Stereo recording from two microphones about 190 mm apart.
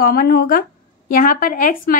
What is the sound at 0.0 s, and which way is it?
A woman's voice, 55° left (ahead or behind).